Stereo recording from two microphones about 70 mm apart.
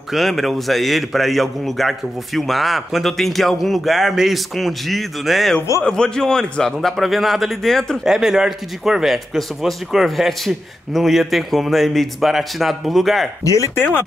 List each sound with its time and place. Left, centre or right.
0.1 s a man's voice: centre
5.9 s a man's voice: centre
8.1 s a man's voice: centre
13.4 s speech: left
13.7 s speech: left